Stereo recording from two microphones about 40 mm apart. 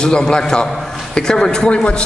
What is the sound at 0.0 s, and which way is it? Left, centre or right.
A man's voice, left.